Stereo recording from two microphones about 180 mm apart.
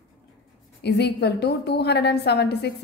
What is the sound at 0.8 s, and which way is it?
A woman's voice, 65° left (ahead or behind).